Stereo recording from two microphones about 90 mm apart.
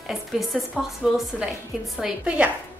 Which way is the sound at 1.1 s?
5° right (ahead or behind).